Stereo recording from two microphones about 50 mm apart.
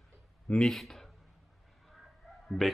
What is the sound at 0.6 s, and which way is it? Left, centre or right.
Speech, centre.